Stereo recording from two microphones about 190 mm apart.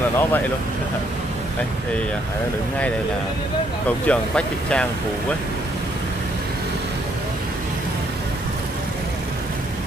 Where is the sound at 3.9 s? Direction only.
5° left (ahead or behind).